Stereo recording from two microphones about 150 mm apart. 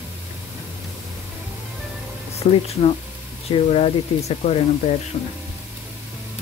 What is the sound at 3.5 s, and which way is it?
Speech, 40° left (ahead or behind).